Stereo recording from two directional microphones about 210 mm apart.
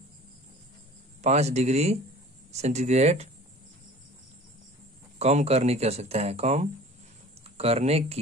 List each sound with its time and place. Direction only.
1.2 s speech: 30° right (ahead or behind)
5.2 s speech: 30° right (ahead or behind)